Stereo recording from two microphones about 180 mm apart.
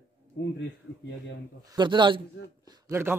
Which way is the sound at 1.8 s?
25° right (ahead or behind).